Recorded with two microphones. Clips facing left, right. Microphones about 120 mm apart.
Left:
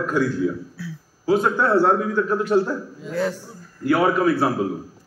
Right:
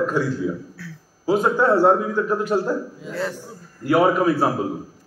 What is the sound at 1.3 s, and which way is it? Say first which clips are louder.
A man's voice: right 1 dB; 5° right (ahead or behind).